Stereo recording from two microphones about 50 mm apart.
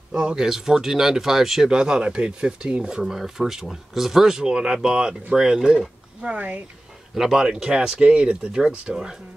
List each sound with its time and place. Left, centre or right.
0.1 s speech: centre
6.2 s speech: right
7.2 s speech: centre